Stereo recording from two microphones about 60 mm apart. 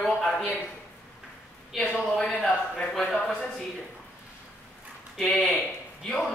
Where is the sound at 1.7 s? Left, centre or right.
Centre.